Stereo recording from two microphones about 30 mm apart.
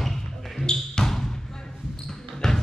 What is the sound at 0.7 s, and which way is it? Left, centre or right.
Basketball bounce, left.